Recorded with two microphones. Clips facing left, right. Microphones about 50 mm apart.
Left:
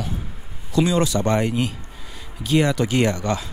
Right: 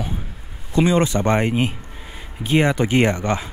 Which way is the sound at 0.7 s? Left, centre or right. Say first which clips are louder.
Right 2 dB; right.